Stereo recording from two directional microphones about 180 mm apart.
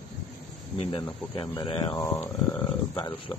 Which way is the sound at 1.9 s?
15° left (ahead or behind).